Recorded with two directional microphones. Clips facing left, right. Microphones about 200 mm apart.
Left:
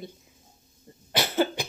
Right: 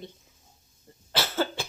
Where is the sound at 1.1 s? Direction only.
15° left (ahead or behind).